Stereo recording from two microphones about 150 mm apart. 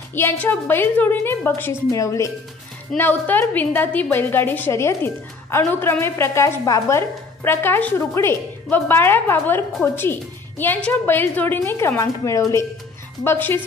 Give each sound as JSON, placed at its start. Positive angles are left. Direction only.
{"t": 0.1, "sound": "a woman's voice", "side_deg": 15}